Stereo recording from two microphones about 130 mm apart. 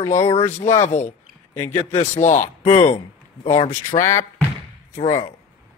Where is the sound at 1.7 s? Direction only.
60° left (ahead or behind).